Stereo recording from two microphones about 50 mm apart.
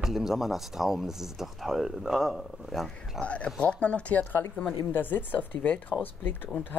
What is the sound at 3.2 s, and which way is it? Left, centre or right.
Speech, left.